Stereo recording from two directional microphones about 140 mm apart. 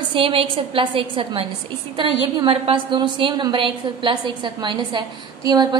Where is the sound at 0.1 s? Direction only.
40° right (ahead or behind).